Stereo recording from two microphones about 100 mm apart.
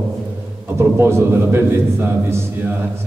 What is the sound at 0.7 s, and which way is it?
A man's voice, 25° right (ahead or behind).